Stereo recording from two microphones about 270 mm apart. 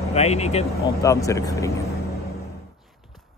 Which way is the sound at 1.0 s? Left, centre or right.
Centre.